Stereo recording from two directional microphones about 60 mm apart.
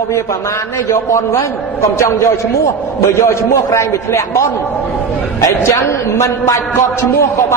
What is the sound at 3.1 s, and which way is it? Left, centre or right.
Mantra, left.